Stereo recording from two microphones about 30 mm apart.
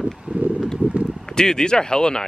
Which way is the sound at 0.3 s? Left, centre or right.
Right.